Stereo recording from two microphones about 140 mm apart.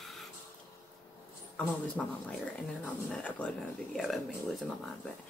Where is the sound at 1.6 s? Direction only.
10° left (ahead or behind).